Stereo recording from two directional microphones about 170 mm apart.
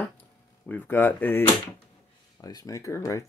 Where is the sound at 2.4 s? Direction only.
20° left (ahead or behind).